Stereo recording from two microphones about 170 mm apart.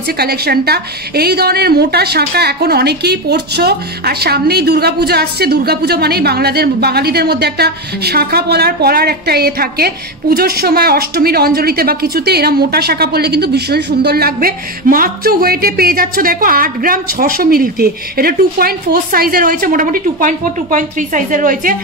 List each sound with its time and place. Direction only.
0.2 s a woman's voice: 65° right (ahead or behind)